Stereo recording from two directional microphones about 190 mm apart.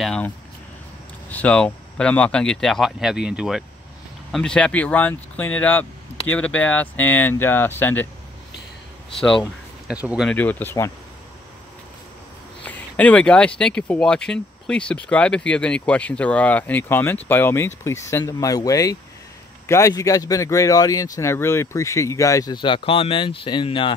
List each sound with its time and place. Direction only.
0.0 s speech: 5° left (ahead or behind)
1.3 s speech: 5° left (ahead or behind)
10.0 s speech: centre (ahead or behind)
10.3 s speech: 10° left (ahead or behind)
12.6 s speech: 5° left (ahead or behind); by 23.9 s 25° left (ahead or behind)